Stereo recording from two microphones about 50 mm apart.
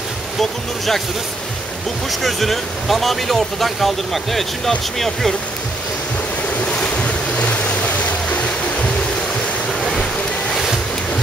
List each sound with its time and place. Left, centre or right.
0.4 s speech: centre
2.0 s speech: centre
6.6 s waves: left